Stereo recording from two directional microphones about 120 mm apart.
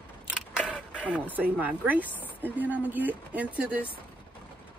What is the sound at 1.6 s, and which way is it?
Speech, 15° right (ahead or behind).